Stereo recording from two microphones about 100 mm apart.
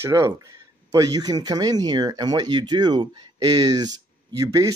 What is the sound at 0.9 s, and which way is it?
Speech, 35° right (ahead or behind).